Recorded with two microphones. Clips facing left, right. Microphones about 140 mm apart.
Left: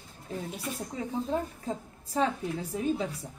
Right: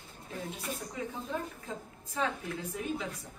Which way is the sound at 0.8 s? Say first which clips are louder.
Left 5 dB; 25° left (ahead or behind).